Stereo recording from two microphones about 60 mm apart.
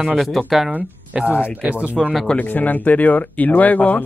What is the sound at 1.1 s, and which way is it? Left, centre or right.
Speech, right.